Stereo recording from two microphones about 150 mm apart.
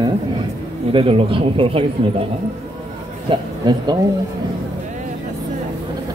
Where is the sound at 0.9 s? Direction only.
35° right (ahead or behind).